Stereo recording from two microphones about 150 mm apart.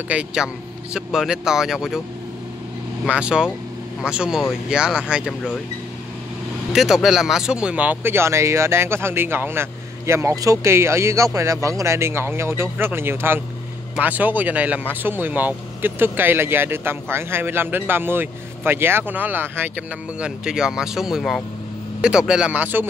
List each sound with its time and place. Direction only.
0.1 s speech: 5° right (ahead or behind)
3.1 s speech: 5° right (ahead or behind)
6.7 s speech: centre (ahead or behind)